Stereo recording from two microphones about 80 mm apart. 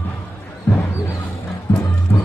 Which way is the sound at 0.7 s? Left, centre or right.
Left.